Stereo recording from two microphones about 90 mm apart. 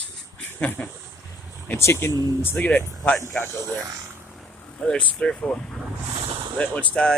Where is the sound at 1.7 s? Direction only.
30° left (ahead or behind).